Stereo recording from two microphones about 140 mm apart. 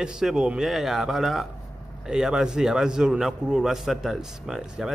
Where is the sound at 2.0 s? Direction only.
5° right (ahead or behind).